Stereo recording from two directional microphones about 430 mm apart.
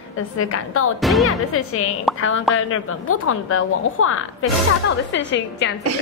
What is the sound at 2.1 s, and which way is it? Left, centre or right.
A woman's voice, left.